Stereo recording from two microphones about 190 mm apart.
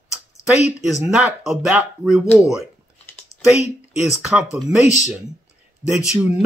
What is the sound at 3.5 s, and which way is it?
Speech, 35° left (ahead or behind).